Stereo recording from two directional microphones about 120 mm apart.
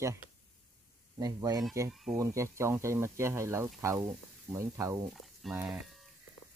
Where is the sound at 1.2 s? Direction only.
30° right (ahead or behind).